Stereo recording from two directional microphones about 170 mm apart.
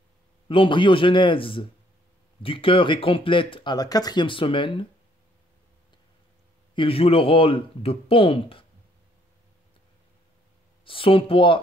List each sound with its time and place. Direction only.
0.5 s speech: 30° left (ahead or behind)
6.7 s speech: 30° left (ahead or behind)
10.9 s speech: 30° left (ahead or behind)